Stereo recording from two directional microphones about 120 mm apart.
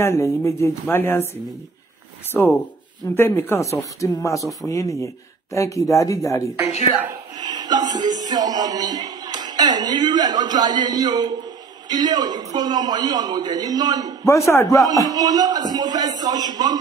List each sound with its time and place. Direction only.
0.0 s speech: 25° left (ahead or behind)
2.3 s speech: 10° left (ahead or behind)
7.4 s speech: 35° right (ahead or behind)
14.2 s speech: 25° left (ahead or behind)
15.0 s speech: 30° right (ahead or behind)